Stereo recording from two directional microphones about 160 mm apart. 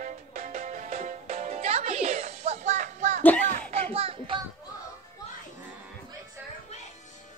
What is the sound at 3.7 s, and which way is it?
Music, 35° right (ahead or behind).